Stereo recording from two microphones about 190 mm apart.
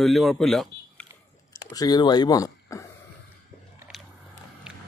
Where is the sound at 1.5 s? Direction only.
20° left (ahead or behind).